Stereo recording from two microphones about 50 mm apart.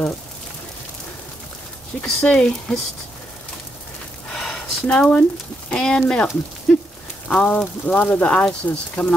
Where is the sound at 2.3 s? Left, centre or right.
Centre.